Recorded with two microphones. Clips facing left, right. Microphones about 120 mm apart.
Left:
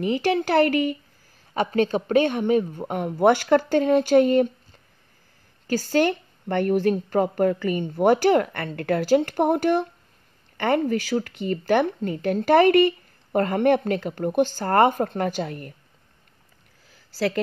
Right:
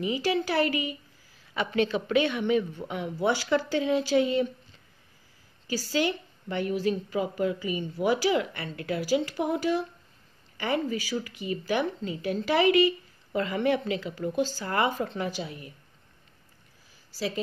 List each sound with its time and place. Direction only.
0.0 s speech: 60° left (ahead or behind)
1.5 s speech: 45° left (ahead or behind)
5.7 s speech: 55° left (ahead or behind)
16.9 s a sound: 65° left (ahead or behind)